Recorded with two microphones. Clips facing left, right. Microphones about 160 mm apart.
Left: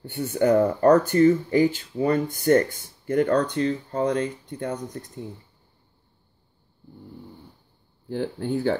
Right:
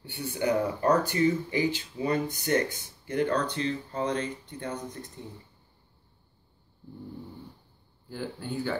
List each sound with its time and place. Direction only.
0.0 s speech: 45° left (ahead or behind)
8.1 s speech: 60° left (ahead or behind)